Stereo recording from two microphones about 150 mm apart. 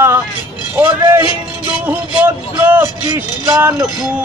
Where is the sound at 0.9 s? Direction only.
20° right (ahead or behind).